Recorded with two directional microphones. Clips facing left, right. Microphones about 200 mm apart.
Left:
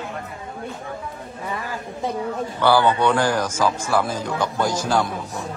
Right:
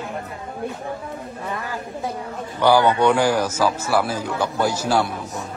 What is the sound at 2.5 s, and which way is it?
A man's voice, 15° right (ahead or behind).